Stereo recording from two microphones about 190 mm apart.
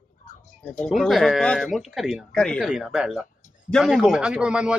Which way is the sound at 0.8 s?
Centre (ahead or behind).